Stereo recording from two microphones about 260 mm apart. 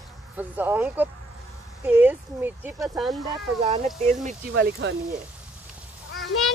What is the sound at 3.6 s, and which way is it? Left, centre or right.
Speech, right.